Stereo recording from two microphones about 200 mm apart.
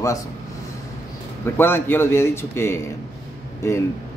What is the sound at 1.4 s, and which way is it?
A man's voice, 10° left (ahead or behind).